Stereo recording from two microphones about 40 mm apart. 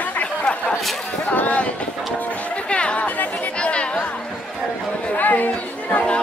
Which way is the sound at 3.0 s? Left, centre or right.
Left.